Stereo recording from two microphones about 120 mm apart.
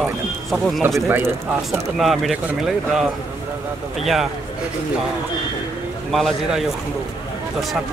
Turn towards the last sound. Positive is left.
turn(degrees=0)  # may be behind; listen again after turning